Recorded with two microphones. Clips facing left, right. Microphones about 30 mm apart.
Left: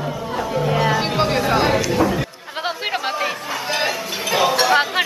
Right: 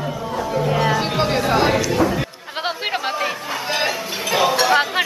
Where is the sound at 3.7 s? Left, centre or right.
Centre.